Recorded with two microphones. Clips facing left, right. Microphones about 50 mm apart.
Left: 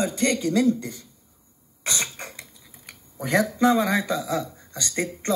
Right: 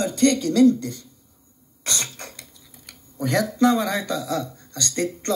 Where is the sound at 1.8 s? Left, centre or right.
Centre.